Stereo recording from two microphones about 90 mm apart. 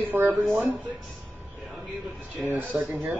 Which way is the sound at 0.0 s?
25° right (ahead or behind).